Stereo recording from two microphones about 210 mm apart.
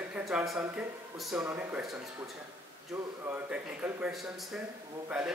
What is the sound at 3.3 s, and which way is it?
Speech, 5° right (ahead or behind).